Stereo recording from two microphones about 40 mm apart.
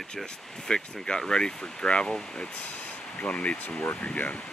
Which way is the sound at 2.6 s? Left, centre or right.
Left.